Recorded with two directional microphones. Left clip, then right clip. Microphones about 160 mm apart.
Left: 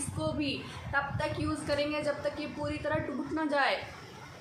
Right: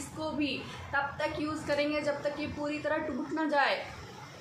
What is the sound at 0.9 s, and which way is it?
A woman's voice, 5° left (ahead or behind).